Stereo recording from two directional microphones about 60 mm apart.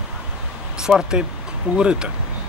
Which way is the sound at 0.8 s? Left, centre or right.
Centre.